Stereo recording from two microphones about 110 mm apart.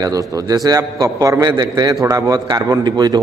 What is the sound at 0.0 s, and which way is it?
A man's voice, 30° right (ahead or behind).